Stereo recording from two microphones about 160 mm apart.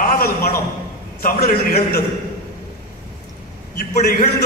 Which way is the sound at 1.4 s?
65° left (ahead or behind).